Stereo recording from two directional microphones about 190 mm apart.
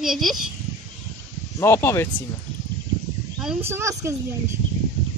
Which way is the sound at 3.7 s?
15° right (ahead or behind).